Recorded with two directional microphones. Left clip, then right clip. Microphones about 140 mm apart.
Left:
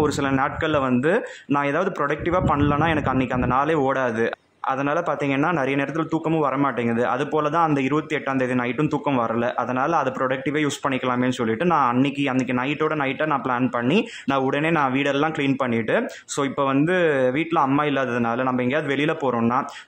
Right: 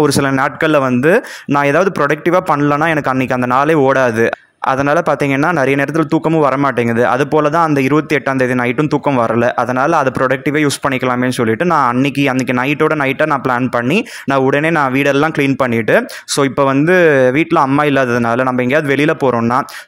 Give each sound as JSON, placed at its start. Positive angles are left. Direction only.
{"t": 0.0, "sound": "speech", "side_deg": -35}